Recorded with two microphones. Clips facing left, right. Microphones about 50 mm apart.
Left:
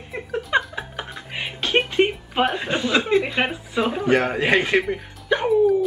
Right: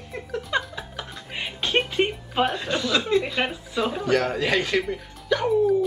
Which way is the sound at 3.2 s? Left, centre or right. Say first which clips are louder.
Left 3 dB; left.